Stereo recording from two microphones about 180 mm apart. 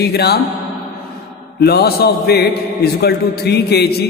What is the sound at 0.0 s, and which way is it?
Speech, 65° left (ahead or behind).